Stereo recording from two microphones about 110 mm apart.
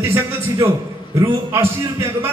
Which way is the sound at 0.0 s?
25° right (ahead or behind).